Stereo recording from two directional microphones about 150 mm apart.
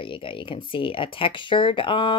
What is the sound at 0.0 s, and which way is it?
Speech, 35° left (ahead or behind).